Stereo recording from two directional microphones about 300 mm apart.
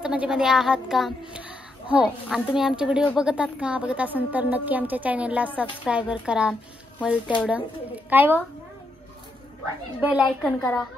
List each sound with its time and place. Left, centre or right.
0.0 s a child's voice: centre
9.9 s a woman's voice: centre